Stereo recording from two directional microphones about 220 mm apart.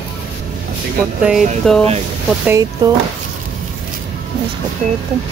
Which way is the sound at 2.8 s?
20° right (ahead or behind).